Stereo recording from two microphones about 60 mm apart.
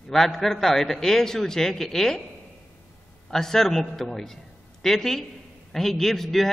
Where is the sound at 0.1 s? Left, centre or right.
Centre.